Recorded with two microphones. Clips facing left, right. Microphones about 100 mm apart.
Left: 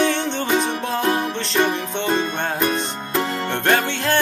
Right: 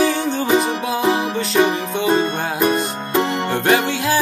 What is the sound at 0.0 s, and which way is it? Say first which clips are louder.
Music: right 2 dB; 5° right (ahead or behind).